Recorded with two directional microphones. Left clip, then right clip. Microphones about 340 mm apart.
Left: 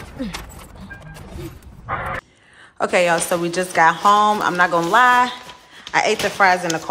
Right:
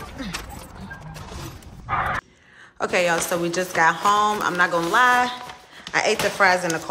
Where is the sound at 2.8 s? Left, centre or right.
Centre.